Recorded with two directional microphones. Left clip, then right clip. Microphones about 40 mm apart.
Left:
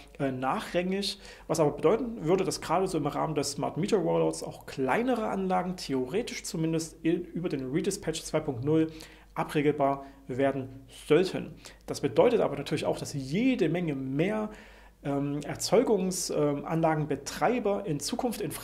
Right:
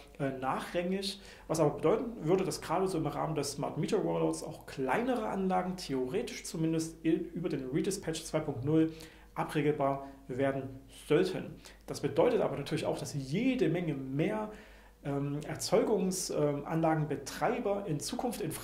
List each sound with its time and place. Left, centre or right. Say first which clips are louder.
0.2 s speech: left 4 dB; left